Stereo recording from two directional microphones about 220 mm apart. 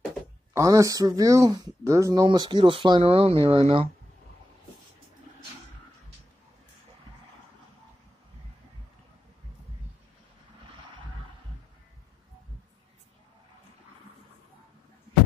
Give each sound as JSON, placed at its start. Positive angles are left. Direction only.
{"t": 0.5, "sound": "speech", "side_deg": -15}